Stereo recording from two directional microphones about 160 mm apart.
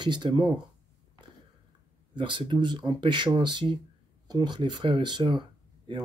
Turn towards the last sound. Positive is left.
turn(degrees=-25)  # may be behind; listen again after turning